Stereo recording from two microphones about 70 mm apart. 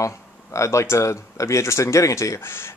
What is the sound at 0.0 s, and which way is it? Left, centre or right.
Speech, left.